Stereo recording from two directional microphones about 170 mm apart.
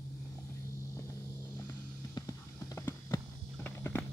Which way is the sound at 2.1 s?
20° left (ahead or behind).